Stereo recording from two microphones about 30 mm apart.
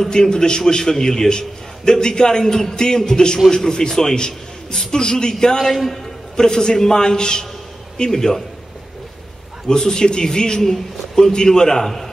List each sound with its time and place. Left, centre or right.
0.1 s a man's voice: left
5.6 s a man's voice: centre
6.3 s a man's voice: left
8.1 s a man's voice: centre
9.7 s a man's voice: left
10.6 s a man's voice: centre